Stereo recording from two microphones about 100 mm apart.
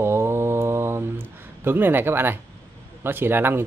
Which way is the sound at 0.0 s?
25° right (ahead or behind).